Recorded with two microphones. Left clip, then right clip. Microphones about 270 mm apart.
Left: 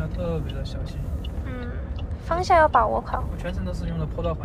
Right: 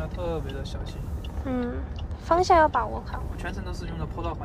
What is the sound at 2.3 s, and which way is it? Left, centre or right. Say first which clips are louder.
Speech: left 1 dB; centre.